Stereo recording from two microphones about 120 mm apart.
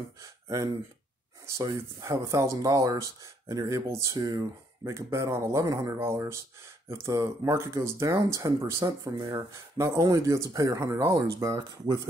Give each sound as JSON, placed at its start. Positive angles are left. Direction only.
{"t": 0.2, "sound": "speech", "side_deg": -30}